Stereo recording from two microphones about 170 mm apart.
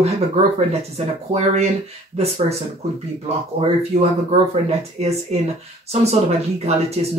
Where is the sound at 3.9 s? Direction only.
50° right (ahead or behind).